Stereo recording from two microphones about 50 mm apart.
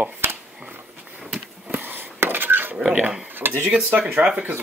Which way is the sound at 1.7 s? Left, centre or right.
Right.